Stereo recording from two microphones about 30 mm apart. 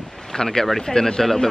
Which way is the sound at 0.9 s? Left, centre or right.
Left.